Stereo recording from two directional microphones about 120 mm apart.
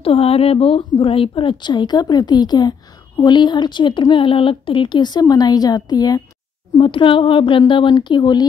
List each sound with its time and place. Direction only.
0.0 s a woman's voice: 55° left (ahead or behind); by 6.2 s 35° left (ahead or behind)
6.8 s a woman's voice: 45° left (ahead or behind)